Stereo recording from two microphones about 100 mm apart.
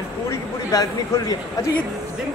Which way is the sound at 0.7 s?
35° left (ahead or behind).